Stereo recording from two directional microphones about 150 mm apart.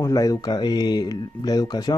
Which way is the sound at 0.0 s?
20° left (ahead or behind).